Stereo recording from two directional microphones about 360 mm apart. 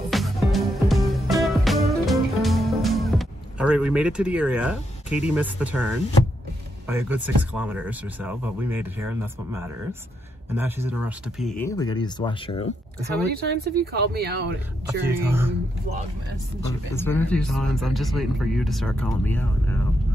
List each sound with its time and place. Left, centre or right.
0.1 s music: centre
6.9 s speech: centre
13.3 s speech: right
15.0 s speech: centre
16.6 s speech: centre